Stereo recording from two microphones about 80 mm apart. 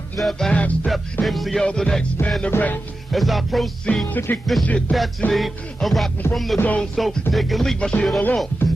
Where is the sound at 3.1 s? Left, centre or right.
Centre.